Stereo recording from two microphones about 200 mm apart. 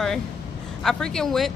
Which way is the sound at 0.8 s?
Centre (ahead or behind).